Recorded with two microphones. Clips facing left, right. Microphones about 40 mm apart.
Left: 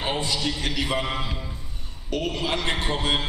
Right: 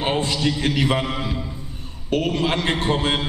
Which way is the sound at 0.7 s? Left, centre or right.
Right.